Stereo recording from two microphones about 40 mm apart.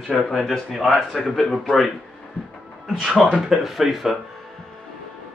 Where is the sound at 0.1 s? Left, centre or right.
Centre.